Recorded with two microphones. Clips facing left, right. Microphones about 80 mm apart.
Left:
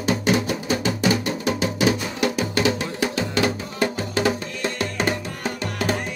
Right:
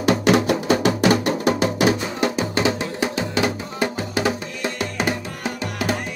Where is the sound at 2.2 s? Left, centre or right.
Right.